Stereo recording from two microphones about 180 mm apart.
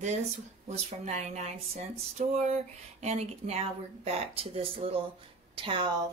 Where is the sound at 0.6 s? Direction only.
40° right (ahead or behind).